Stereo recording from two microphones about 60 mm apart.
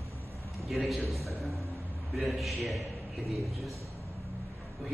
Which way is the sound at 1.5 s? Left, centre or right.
Right.